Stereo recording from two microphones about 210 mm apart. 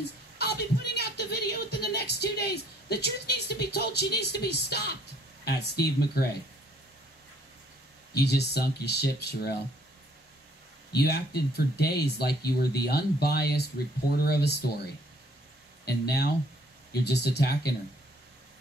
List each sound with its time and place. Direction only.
0.4 s speech: 50° left (ahead or behind)
8.1 s speech: 50° left (ahead or behind)
10.9 s speech: 50° left (ahead or behind)
15.8 s speech: 50° left (ahead or behind)